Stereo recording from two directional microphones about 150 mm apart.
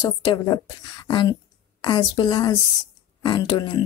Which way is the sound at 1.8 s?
30° left (ahead or behind).